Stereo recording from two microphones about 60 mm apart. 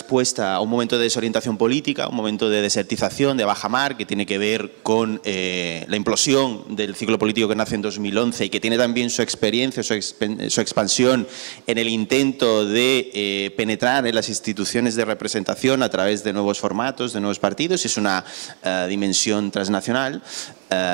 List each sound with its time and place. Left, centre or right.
0.1 s speech: right